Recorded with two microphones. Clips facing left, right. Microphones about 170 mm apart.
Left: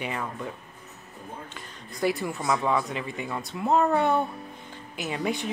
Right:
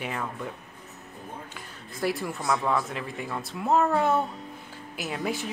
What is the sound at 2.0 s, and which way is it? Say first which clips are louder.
A woman's voice: left 2 dB; centre (ahead or behind).